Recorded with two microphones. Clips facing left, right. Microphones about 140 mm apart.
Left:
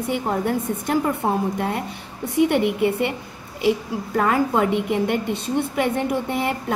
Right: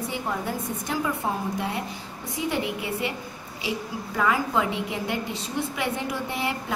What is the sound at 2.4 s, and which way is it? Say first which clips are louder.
Speech: left 10 dB; 65° left (ahead or behind).